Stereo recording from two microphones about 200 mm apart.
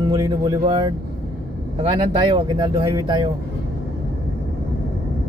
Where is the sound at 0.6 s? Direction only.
30° right (ahead or behind).